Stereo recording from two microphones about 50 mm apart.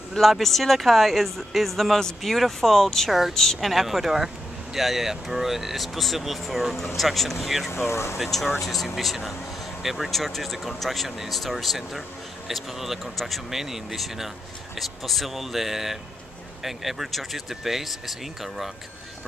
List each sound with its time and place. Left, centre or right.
0.1 s speech: centre
7.7 s speech: left
8.2 s speech: centre